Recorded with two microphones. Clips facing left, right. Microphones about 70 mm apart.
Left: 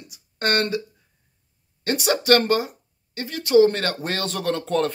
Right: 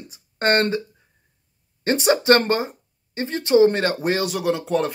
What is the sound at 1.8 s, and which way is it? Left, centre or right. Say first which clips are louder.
Speech: right 4 dB; right.